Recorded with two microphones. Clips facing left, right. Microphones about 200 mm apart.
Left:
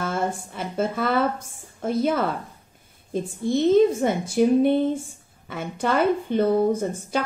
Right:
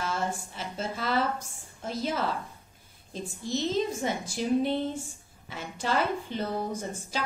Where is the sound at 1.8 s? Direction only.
55° left (ahead or behind).